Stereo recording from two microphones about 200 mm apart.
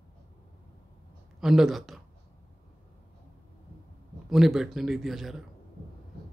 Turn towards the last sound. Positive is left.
turn(degrees=0)  # may be behind; listen again after turning